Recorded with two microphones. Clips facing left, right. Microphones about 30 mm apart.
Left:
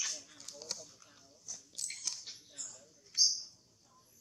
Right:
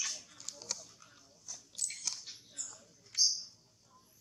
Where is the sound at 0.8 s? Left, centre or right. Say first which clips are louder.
Left 1 dB; centre.